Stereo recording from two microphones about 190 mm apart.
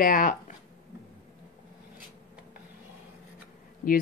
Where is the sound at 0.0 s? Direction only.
45° left (ahead or behind).